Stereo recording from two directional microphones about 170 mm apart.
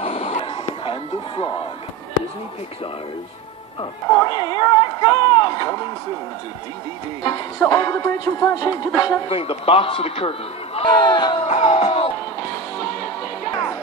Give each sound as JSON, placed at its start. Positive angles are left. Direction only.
{"t": 0.0, "sound": "a sound", "side_deg": 40}
{"t": 4.1, "sound": "speech", "side_deg": 25}
{"t": 7.5, "sound": "speech", "side_deg": 15}
{"t": 9.3, "sound": "a man's voice", "side_deg": 35}
{"t": 11.4, "sound": "music", "side_deg": 45}
{"t": 11.8, "sound": "music", "side_deg": 35}